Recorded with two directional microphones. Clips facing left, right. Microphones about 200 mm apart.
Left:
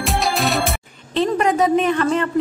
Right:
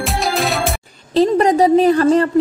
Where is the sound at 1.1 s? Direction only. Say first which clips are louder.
Right 5 dB; 35° right (ahead or behind).